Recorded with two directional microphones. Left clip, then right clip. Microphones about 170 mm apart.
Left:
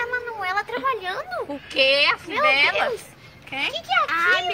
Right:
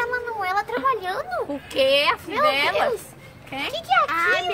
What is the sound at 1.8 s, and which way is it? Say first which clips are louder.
Speech: left 1 dB; 15° right (ahead or behind).